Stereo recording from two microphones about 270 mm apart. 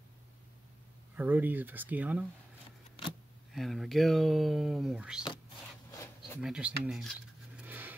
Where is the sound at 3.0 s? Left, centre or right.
Left.